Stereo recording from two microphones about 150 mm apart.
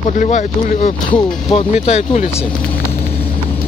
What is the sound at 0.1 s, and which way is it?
Speech, 55° left (ahead or behind).